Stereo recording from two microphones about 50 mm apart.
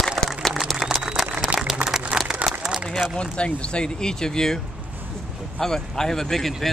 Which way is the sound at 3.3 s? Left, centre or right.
Left.